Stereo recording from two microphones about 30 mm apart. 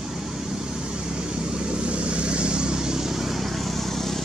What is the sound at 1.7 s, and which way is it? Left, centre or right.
Vehicle, right.